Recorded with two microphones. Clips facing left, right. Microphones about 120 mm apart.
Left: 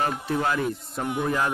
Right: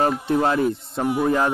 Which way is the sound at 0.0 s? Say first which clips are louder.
Right 6 dB; 30° right (ahead or behind).